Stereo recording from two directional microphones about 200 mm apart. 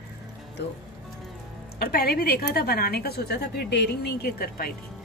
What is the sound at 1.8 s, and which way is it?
A woman's voice, 50° left (ahead or behind).